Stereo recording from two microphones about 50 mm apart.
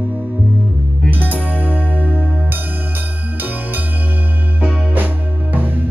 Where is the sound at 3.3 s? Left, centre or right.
Right.